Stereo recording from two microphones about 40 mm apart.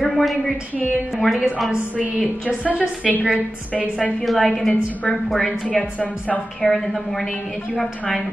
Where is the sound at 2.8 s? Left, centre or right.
Left.